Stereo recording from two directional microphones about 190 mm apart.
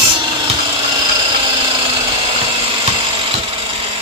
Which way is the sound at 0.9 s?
25° right (ahead or behind).